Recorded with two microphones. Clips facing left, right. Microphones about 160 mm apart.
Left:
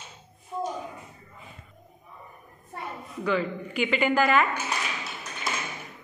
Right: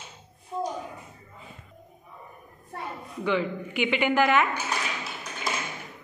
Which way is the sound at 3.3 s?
15° right (ahead or behind).